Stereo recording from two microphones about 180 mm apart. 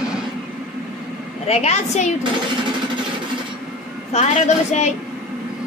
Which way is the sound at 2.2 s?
25° right (ahead or behind).